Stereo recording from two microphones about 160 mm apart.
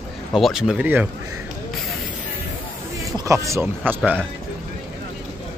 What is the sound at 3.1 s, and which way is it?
Speech, 20° right (ahead or behind).